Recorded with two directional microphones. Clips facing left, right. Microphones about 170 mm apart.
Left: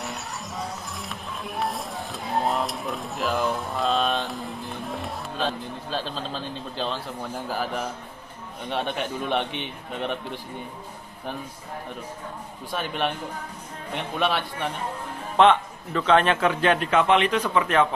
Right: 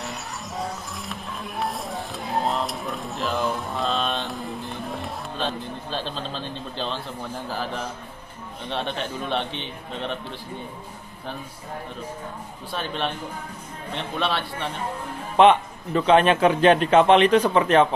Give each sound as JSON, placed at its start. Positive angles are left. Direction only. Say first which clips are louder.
{"t": 0.0, "sound": "music", "louder": "even", "side_deg": 0}
{"t": 7.4, "sound": "speech", "louder": "left 2 dB", "side_deg": 10}
{"t": 12.7, "sound": "speech", "louder": "left 1 dB", "side_deg": 10}
{"t": 15.3, "sound": "a man's voice", "louder": "right 2 dB", "side_deg": -15}